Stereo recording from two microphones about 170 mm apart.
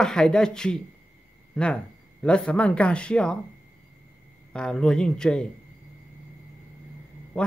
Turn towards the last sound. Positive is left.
turn(degrees=5)  # may be behind; listen again after turning